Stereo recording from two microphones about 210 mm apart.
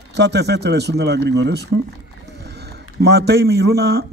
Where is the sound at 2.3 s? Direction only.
50° right (ahead or behind).